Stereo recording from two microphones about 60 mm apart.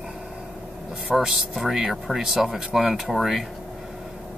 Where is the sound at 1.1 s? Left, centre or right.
Centre.